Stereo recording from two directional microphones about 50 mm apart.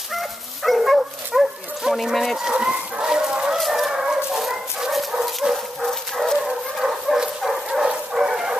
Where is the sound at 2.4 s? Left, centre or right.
Centre.